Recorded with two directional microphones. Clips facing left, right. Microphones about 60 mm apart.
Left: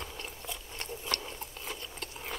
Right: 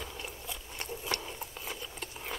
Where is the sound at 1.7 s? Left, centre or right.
Centre.